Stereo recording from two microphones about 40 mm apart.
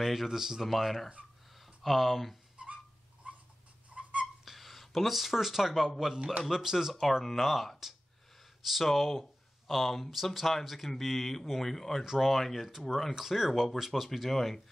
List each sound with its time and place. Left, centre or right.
0.0 s speech: centre
2.5 s whistle: right
3.3 s dog: right
3.9 s a sound: right
4.5 s speech: centre
14.3 s speech: centre